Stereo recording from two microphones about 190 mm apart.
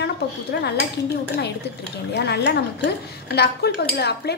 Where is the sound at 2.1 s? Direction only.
60° left (ahead or behind).